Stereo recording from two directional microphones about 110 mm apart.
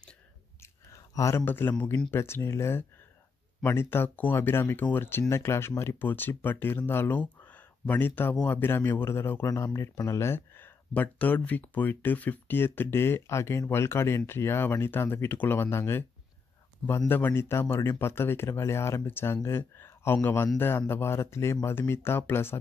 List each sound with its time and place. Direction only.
0.6 s a sound: 30° left (ahead or behind)
2.0 s speech: 20° left (ahead or behind)
17.1 s speech: 20° left (ahead or behind)